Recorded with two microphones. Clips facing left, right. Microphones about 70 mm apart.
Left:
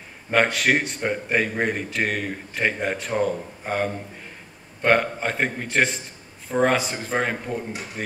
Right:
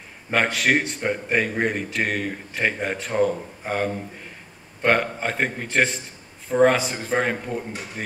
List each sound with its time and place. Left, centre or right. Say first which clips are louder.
0.3 s a man's voice: left 1 dB; centre